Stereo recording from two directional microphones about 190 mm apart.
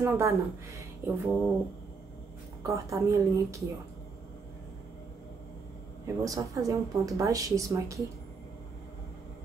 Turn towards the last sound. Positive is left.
turn(degrees=-15)  # may be behind; listen again after turning